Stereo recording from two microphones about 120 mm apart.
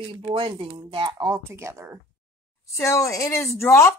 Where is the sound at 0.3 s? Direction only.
45° right (ahead or behind).